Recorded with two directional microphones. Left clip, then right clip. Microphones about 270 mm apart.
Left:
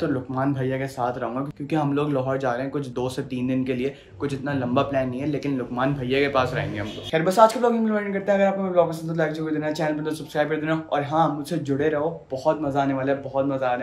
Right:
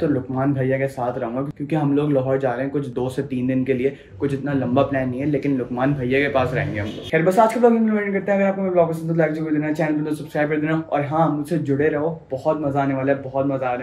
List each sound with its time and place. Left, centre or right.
0.4 s speech: centre
12.4 s speech: centre